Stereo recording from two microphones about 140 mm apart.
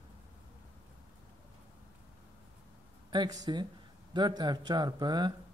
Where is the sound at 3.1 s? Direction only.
30° right (ahead or behind).